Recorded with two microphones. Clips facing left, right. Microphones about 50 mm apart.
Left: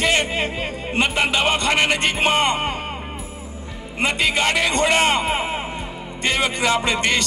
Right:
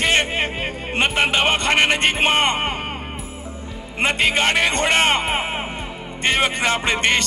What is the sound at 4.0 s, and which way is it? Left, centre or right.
Music, right.